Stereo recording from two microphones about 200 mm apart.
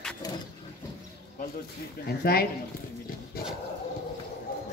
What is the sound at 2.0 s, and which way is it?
Speech, 50° left (ahead or behind).